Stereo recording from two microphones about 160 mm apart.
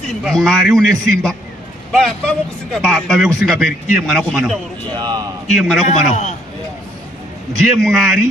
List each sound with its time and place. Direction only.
0.2 s a man's voice: 5° left (ahead or behind)
4.9 s speech: 25° right (ahead or behind)
5.5 s a man's voice: centre (ahead or behind)
5.9 s a man's voice: 50° left (ahead or behind)
7.5 s a man's voice: 5° left (ahead or behind)